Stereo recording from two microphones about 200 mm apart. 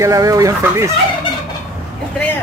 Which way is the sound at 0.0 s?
15° right (ahead or behind).